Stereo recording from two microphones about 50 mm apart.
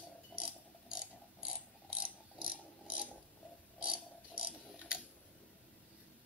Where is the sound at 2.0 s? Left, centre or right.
Right.